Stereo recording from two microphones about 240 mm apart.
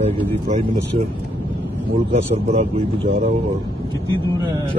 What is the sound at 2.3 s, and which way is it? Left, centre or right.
A man's voice, right.